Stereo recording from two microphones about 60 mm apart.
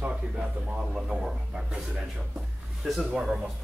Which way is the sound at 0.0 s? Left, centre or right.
Centre.